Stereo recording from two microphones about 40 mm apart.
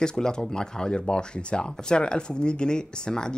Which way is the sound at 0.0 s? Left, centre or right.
Centre.